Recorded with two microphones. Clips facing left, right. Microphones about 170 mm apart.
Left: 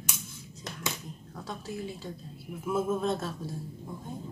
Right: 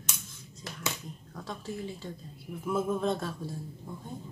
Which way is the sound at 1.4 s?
5° left (ahead or behind).